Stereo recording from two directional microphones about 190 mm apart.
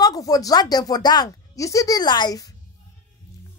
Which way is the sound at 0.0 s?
20° left (ahead or behind).